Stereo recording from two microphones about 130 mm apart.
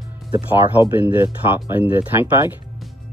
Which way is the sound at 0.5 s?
15° right (ahead or behind).